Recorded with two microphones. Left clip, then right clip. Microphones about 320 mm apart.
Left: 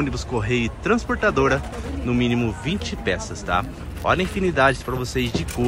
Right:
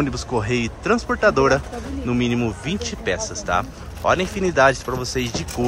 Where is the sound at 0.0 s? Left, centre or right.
Centre.